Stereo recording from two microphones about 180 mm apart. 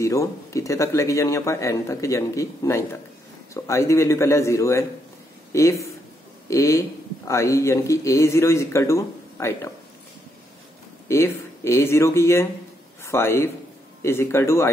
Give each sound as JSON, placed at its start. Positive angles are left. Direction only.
{"t": 0.0, "sound": "a man's voice", "side_deg": 15}
{"t": 11.1, "sound": "a man's voice", "side_deg": 15}